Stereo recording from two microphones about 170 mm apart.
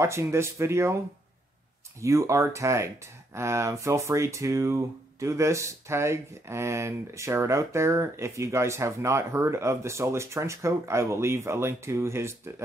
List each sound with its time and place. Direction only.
0.0 s speech: 15° right (ahead or behind)
2.0 s speech: 15° right (ahead or behind)